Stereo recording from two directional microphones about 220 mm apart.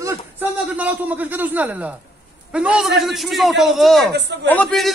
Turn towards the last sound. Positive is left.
turn(degrees=5)  # may be behind; listen again after turning